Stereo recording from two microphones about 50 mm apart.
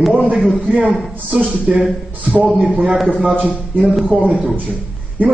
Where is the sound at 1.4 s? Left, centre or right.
Right.